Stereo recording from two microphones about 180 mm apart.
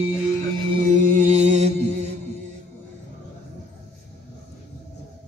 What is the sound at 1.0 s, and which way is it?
Mantra, 45° right (ahead or behind).